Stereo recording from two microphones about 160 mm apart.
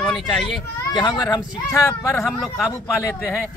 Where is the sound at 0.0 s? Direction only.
Centre (ahead or behind).